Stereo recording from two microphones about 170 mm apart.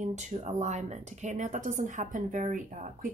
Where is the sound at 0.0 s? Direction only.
45° right (ahead or behind).